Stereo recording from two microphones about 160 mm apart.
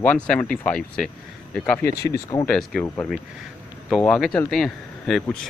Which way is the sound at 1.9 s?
20° left (ahead or behind).